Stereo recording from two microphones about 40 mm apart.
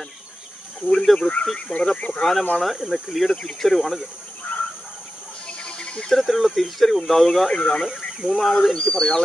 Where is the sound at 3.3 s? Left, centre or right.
Centre.